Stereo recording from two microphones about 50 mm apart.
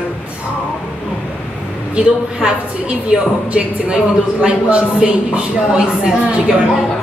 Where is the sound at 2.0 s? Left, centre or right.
Centre.